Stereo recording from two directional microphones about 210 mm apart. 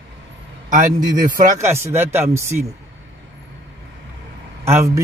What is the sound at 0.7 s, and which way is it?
Speech, 35° right (ahead or behind).